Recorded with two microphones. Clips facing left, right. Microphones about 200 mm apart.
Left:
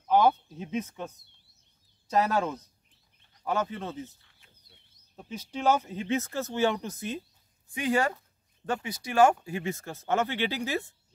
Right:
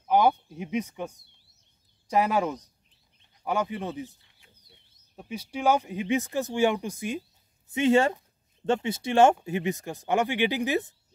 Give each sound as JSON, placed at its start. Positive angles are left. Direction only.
{"t": 0.0, "sound": "speech", "side_deg": -15}
{"t": 7.7, "sound": "speech", "side_deg": -25}